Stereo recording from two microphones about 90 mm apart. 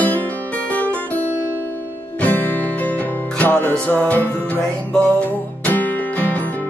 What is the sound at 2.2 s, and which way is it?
Music, 20° left (ahead or behind).